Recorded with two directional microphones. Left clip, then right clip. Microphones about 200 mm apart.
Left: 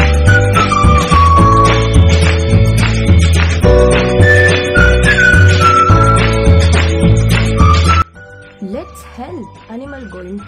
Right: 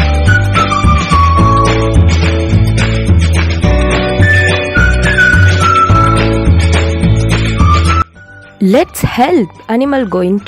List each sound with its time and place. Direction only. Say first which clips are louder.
0.8 s music: left 1 dB; centre (ahead or behind)
3.3 s music: left 6 dB; centre (ahead or behind)
7.5 s music: left 1 dB; centre (ahead or behind)
8.7 s speech: right 17 dB; 40° right (ahead or behind)